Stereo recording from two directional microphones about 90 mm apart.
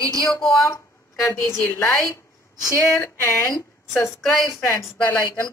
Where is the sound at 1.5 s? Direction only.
30° left (ahead or behind).